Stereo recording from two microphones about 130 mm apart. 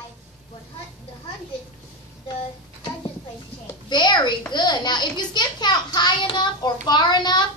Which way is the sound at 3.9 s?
35° left (ahead or behind).